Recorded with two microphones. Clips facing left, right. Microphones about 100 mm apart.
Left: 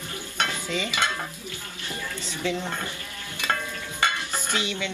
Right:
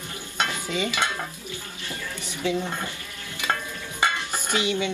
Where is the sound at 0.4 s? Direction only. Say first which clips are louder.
Right 2 dB; 15° right (ahead or behind).